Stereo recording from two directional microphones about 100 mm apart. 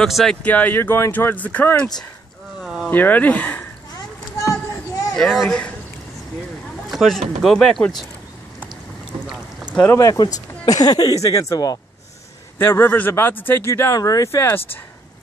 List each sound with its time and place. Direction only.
0.0 s speech: 5° left (ahead or behind)
2.6 s a sound: 5° right (ahead or behind)
2.9 s speech: 20° left (ahead or behind)
5.1 s speech: 5° left (ahead or behind)
6.9 s a sound: centre (ahead or behind)
7.4 s speech: 5° left (ahead or behind)
9.9 s speech: 35° left (ahead or behind)
12.5 s speech: 25° left (ahead or behind)
13.9 s speech: 35° left (ahead or behind)